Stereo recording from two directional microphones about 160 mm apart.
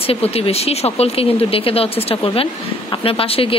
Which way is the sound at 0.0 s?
35° left (ahead or behind).